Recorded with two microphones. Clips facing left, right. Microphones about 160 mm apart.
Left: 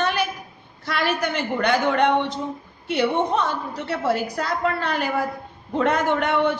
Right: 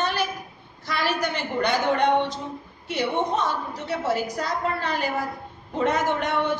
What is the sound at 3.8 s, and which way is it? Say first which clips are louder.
A man's voice: left 2 dB; 65° left (ahead or behind).